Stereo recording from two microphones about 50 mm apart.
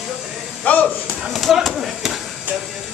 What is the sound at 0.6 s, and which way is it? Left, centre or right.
Speech, left.